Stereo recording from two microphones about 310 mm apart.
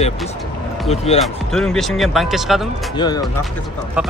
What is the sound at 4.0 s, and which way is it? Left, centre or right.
Speech, centre.